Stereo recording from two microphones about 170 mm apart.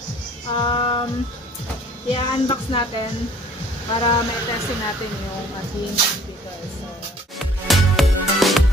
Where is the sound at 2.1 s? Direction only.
30° left (ahead or behind).